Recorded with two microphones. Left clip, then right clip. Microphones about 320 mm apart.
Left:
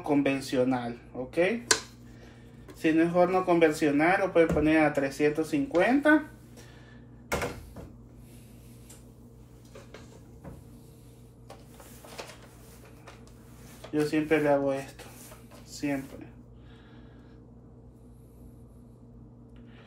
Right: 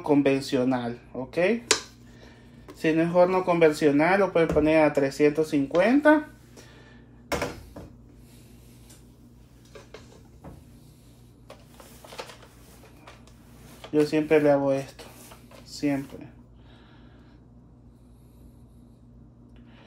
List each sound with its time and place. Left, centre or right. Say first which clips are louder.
0.0 s speech: right 5 dB; right
2.8 s speech: right 3 dB; right
14.1 s speech: right 3 dB; right
15.7 s a sound: right 4 dB; right